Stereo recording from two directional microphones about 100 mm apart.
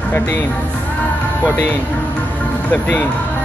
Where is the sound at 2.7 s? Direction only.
15° left (ahead or behind).